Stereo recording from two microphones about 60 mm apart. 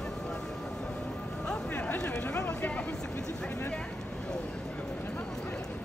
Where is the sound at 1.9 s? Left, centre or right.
Centre.